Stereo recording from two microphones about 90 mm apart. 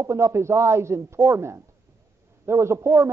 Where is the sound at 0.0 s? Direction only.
35° right (ahead or behind).